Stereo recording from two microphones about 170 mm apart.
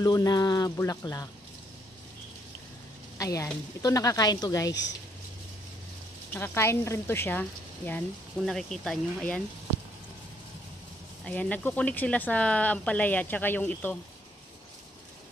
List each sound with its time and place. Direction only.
0.0 s speech: 25° left (ahead or behind)
3.2 s speech: 20° left (ahead or behind)
6.3 s speech: 15° left (ahead or behind)
11.2 s speech: 10° left (ahead or behind)